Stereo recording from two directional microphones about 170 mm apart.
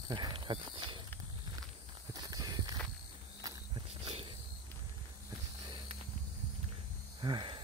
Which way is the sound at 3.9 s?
30° right (ahead or behind).